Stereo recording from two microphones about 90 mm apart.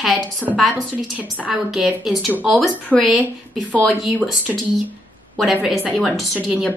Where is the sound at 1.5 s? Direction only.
5° right (ahead or behind).